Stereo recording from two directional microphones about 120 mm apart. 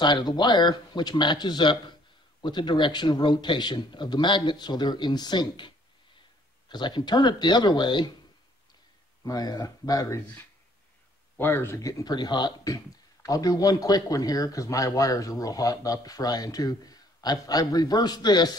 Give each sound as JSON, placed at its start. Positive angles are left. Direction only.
{"t": 0.0, "sound": "speech", "side_deg": 40}
{"t": 6.7, "sound": "speech", "side_deg": 40}
{"t": 9.2, "sound": "speech", "side_deg": 35}